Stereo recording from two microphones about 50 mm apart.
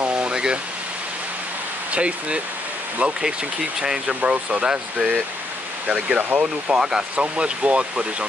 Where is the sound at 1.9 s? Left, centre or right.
Right.